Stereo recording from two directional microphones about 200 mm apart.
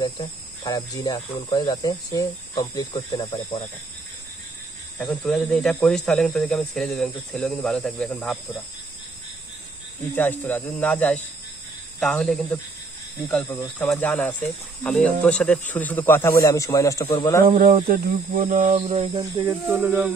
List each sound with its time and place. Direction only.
0.0 s speech: 20° left (ahead or behind)
4.9 s speech: centre (ahead or behind)
10.1 s speech: 10° left (ahead or behind)
17.5 s cricket: 40° right (ahead or behind)
18.9 s speech: 25° right (ahead or behind)